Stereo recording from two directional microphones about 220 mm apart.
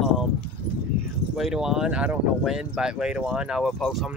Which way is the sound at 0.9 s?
40° left (ahead or behind).